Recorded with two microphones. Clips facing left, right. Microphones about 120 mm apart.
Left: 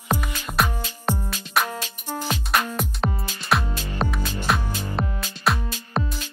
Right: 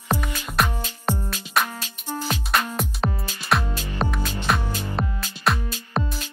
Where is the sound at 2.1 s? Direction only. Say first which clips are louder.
Even; 15° left (ahead or behind).